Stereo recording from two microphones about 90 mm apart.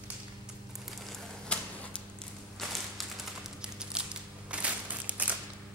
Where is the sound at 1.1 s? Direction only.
15° left (ahead or behind).